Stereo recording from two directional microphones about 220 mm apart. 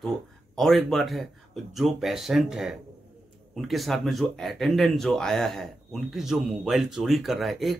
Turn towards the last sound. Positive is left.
turn(degrees=0)  # may be behind; listen again after turning